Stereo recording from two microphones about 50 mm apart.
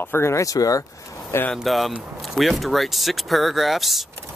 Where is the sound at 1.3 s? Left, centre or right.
Left.